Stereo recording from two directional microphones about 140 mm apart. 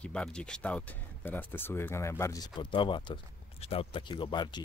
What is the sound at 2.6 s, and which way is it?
A man's voice, 35° left (ahead or behind).